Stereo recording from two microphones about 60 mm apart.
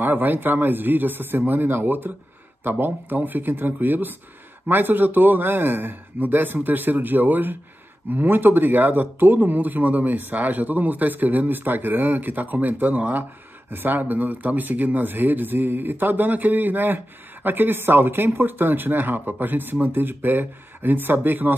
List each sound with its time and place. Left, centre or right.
0.0 s speech: right